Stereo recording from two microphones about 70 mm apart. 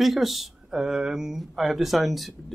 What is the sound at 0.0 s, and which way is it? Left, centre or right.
Speech, centre.